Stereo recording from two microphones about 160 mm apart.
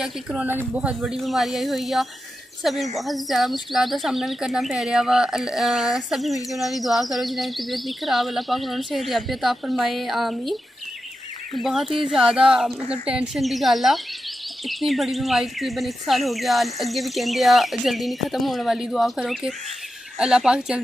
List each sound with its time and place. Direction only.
0.0 s a woman's voice: 10° right (ahead or behind)
11.6 s speech: centre (ahead or behind)